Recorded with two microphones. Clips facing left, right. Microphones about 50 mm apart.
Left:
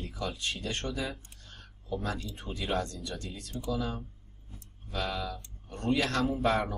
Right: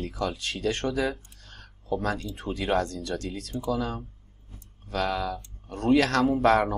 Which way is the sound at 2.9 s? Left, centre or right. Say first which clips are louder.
Right 8 dB; right.